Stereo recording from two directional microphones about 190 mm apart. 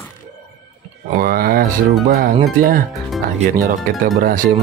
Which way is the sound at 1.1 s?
50° right (ahead or behind).